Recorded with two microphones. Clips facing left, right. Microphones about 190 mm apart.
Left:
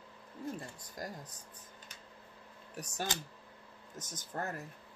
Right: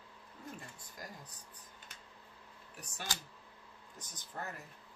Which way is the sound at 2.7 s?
40° left (ahead or behind).